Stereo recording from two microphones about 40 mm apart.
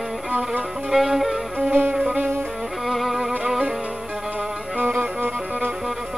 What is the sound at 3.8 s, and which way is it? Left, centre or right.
Music, right.